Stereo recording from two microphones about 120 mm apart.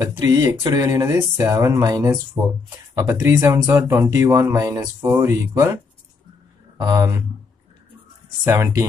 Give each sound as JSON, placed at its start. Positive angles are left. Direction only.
{"t": 0.0, "sound": "speech", "side_deg": -25}
{"t": 6.8, "sound": "speech", "side_deg": -30}
{"t": 8.5, "sound": "speech", "side_deg": -25}